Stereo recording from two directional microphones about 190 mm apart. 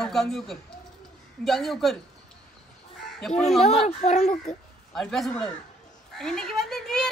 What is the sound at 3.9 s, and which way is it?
Speech, 35° left (ahead or behind).